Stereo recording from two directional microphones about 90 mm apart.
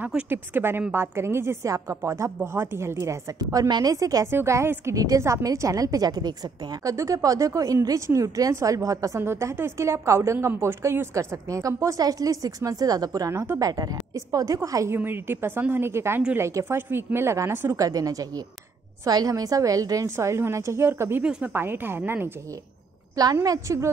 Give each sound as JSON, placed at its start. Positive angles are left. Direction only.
{"t": 0.3, "sound": "a woman's voice", "side_deg": -25}
{"t": 3.5, "sound": "a woman's voice", "side_deg": -50}
{"t": 13.3, "sound": "a woman's voice", "side_deg": -30}
{"t": 15.0, "sound": "a woman's voice", "side_deg": -25}
{"t": 17.7, "sound": "a woman's voice", "side_deg": -40}
{"t": 21.2, "sound": "speech", "side_deg": -15}
{"t": 21.5, "sound": "a woman's voice", "side_deg": -25}
{"t": 23.4, "sound": "a woman's voice", "side_deg": -40}